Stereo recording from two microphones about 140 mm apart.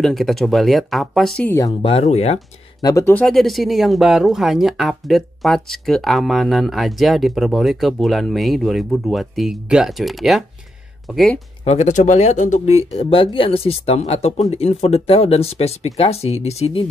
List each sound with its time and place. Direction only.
0.0 s speech: centre (ahead or behind)
1.8 s speech: 45° left (ahead or behind)
2.8 s speech: 20° left (ahead or behind)
3.2 s speech: 5° left (ahead or behind)
11.6 s speech: 50° left (ahead or behind)